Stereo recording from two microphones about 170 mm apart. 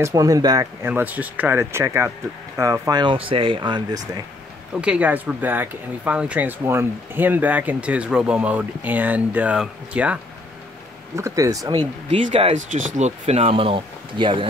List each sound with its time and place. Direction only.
0.0 s speech: 20° right (ahead or behind)
0.8 s speech: 10° right (ahead or behind)
4.7 s speech: 5° right (ahead or behind)
11.1 s speech: 20° right (ahead or behind)
12.1 s speech: 35° right (ahead or behind)